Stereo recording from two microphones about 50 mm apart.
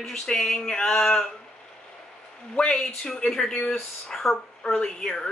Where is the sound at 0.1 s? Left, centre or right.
Centre.